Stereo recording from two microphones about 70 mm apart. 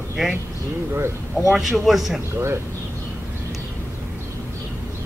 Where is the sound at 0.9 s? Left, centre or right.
Right.